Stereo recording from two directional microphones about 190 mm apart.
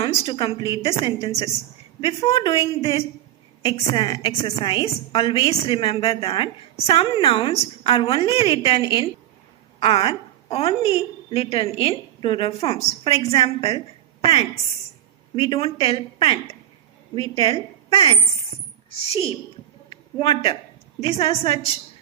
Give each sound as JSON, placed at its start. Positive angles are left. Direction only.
{"t": 0.0, "sound": "a woman's voice", "side_deg": 30}
{"t": 17.4, "sound": "a woman's voice", "side_deg": 25}
{"t": 19.9, "sound": "a sound", "side_deg": 30}
{"t": 21.0, "sound": "a woman's voice", "side_deg": 30}